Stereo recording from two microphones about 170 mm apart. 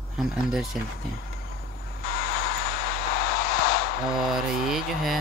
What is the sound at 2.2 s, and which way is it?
Vehicle, 60° left (ahead or behind).